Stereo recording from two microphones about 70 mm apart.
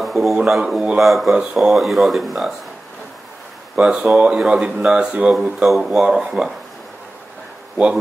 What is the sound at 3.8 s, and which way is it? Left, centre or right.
Speech, centre.